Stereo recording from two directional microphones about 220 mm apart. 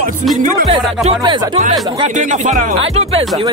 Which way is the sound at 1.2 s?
20° right (ahead or behind).